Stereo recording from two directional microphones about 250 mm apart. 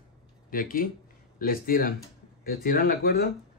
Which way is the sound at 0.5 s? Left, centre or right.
Left.